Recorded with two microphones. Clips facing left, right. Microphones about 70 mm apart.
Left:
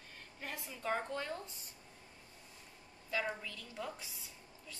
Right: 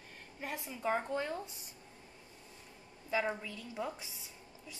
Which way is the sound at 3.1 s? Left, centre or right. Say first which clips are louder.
Right 4 dB; centre.